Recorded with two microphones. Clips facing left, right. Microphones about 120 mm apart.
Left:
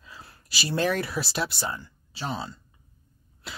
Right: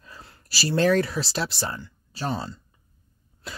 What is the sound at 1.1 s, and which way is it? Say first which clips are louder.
Speech: right 1 dB; 25° right (ahead or behind).